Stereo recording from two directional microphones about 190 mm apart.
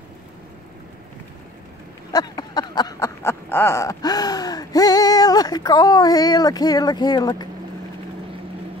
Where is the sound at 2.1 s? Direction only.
20° left (ahead or behind).